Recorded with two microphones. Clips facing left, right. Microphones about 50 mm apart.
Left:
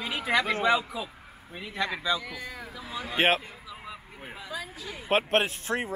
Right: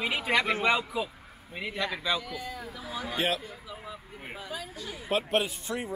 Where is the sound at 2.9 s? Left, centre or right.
Centre.